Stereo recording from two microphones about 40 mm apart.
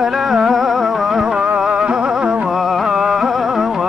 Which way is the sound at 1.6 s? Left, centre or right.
Right.